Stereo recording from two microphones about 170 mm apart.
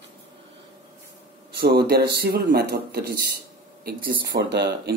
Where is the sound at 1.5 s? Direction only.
70° right (ahead or behind).